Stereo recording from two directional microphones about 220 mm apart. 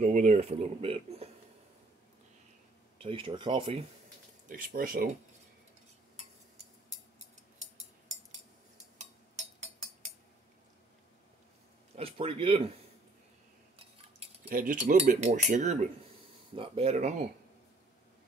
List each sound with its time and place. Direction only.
0.0 s speech: 30° right (ahead or behind)
3.0 s speech: 25° right (ahead or behind)
4.5 s speech: 40° right (ahead or behind)
8.9 s a sound: 30° right (ahead or behind)
11.9 s speech: 25° right (ahead or behind)
13.7 s cutlery: 30° right (ahead or behind)
14.5 s speech: 40° right (ahead or behind)